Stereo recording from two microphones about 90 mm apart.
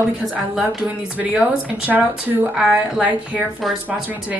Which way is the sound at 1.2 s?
20° right (ahead or behind).